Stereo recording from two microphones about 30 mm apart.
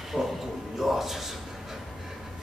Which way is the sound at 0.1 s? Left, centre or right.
Centre.